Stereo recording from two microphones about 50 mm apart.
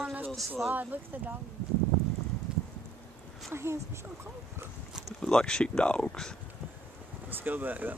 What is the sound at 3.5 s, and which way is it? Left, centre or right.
Speech, right.